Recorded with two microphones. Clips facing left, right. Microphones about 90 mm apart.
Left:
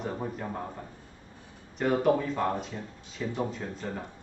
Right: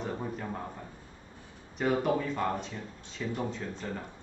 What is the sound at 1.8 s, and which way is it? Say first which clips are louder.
A man's voice: left 3 dB; centre (ahead or behind).